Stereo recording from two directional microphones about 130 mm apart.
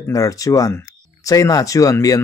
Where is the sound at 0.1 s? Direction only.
25° left (ahead or behind).